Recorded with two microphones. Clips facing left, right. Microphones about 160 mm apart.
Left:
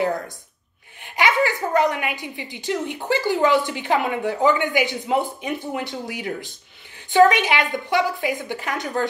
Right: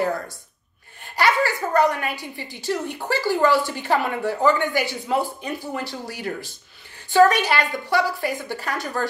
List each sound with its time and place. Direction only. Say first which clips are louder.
1.0 s a woman's voice: even; 20° left (ahead or behind)